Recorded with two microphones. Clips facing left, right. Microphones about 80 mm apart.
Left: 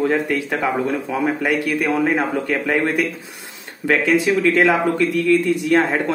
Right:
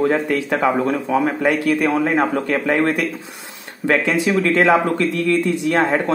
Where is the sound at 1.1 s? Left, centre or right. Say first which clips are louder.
Right 2 dB; right.